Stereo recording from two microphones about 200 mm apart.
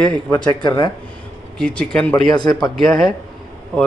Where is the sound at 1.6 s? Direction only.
5° left (ahead or behind).